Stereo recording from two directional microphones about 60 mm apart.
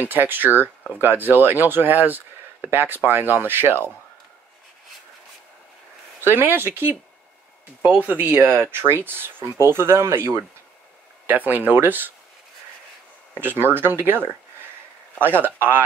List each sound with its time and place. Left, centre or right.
0.0 s speech: right
6.2 s speech: right
11.2 s speech: right
13.3 s speech: right
15.4 s speech: right